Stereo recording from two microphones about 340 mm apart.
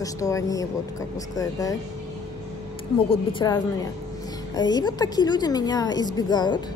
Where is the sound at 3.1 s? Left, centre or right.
Centre.